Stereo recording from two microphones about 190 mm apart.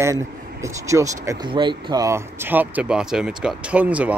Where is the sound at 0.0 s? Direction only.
15° right (ahead or behind).